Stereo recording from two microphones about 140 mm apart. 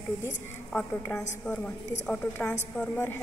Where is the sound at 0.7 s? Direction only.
5° left (ahead or behind).